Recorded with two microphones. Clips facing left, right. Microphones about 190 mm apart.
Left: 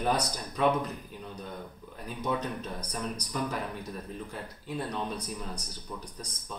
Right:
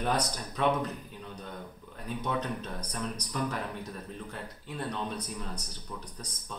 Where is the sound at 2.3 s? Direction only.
5° left (ahead or behind).